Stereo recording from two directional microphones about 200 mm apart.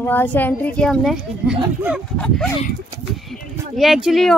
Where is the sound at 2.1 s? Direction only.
5° left (ahead or behind).